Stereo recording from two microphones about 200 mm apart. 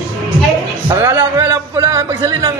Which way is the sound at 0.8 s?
10° right (ahead or behind).